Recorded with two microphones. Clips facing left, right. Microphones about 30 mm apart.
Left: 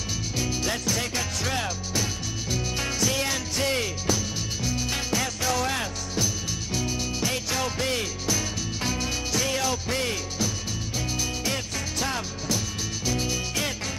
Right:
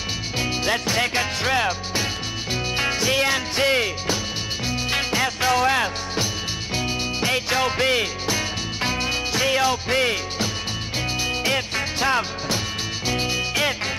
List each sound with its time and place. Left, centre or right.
0.4 s music: right